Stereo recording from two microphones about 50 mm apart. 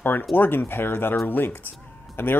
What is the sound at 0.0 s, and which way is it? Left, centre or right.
Speech, left.